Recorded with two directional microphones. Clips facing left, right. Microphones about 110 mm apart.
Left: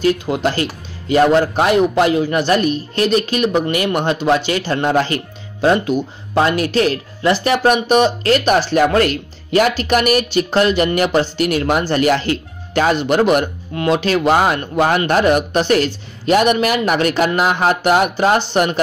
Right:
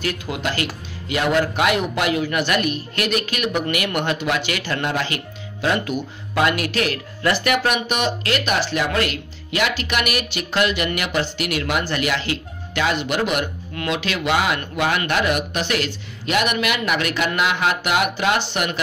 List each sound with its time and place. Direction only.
0.0 s speech: 30° left (ahead or behind)